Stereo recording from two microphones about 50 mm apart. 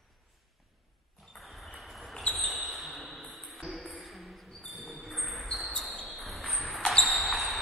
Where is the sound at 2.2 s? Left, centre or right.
Left.